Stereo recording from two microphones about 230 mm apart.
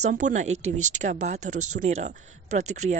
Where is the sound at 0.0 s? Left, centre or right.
Right.